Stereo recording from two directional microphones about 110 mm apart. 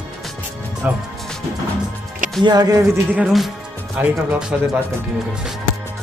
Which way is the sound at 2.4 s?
35° right (ahead or behind).